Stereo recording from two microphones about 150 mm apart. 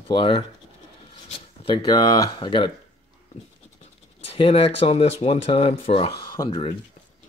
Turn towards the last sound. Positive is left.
turn(degrees=30)  # may be behind; listen again after turning